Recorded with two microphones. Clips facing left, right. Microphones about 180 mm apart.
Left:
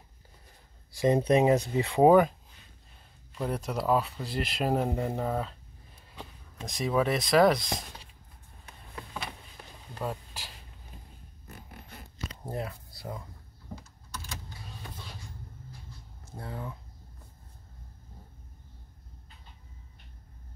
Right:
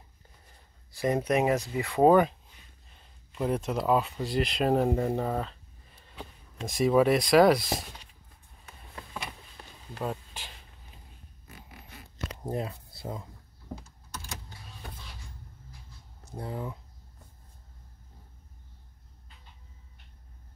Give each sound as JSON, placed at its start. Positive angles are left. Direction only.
{"t": 0.9, "sound": "speech", "side_deg": 20}
{"t": 2.0, "sound": "speech", "side_deg": 0}
{"t": 3.3, "sound": "speech", "side_deg": -5}
{"t": 10.0, "sound": "speech", "side_deg": 5}
{"t": 11.4, "sound": "a sound", "side_deg": 50}
{"t": 12.4, "sound": "speech", "side_deg": -20}
{"t": 16.3, "sound": "speech", "side_deg": -20}